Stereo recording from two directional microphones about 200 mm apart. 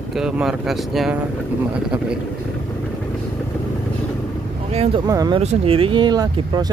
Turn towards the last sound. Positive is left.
turn(degrees=-20)  # may be behind; listen again after turning